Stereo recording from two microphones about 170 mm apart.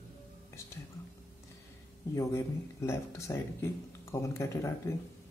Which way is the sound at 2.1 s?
15° left (ahead or behind).